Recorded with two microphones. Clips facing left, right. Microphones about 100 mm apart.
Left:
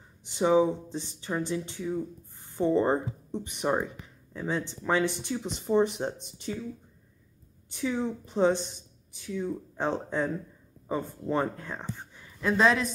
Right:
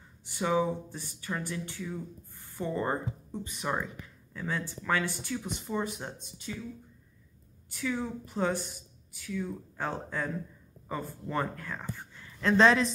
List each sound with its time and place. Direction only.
0.3 s speech: 20° left (ahead or behind)
7.7 s speech: 20° left (ahead or behind); by 12.9 s 5° left (ahead or behind)